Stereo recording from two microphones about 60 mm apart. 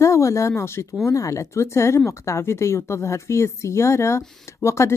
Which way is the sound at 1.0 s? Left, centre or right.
Left.